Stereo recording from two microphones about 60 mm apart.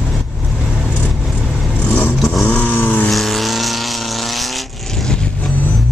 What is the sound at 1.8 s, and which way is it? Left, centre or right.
Vehicle, left.